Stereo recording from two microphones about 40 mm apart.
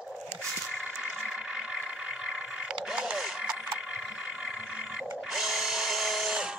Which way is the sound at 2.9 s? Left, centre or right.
Centre.